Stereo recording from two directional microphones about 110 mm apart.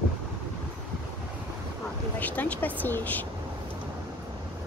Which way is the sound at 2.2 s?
15° left (ahead or behind).